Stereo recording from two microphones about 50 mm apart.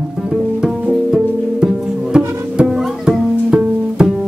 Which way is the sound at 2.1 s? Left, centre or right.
Centre.